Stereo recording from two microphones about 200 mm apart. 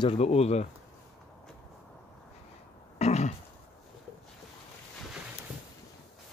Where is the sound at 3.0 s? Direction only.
35° left (ahead or behind).